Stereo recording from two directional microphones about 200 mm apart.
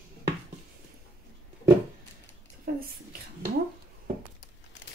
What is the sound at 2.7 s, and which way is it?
Speech, 45° right (ahead or behind).